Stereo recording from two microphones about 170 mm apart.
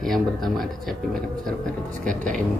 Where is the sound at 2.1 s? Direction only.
50° right (ahead or behind).